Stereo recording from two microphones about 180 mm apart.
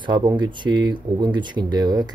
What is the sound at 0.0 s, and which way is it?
Speech, 25° right (ahead or behind).